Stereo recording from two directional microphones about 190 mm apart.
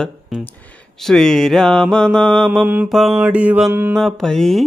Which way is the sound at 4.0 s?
Centre (ahead or behind).